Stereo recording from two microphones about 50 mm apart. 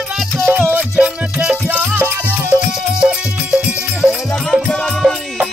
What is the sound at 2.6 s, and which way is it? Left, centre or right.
Music, centre.